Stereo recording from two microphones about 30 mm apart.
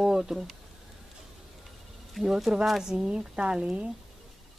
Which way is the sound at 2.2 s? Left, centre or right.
Centre.